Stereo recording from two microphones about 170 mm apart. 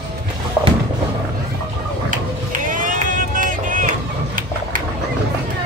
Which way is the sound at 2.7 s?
50° right (ahead or behind).